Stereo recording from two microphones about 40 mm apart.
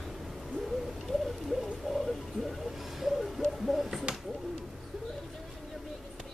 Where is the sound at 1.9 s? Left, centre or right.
Centre.